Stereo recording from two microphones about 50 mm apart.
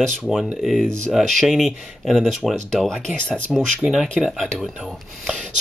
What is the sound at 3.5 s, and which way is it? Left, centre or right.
Speech, centre.